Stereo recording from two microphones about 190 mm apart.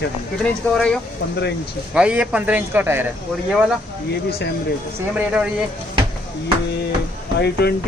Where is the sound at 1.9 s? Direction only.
5° right (ahead or behind).